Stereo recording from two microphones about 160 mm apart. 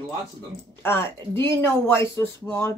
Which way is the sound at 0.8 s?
15° left (ahead or behind).